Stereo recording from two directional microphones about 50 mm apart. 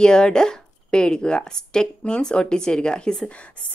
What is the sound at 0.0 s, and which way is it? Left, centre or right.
Speech, centre.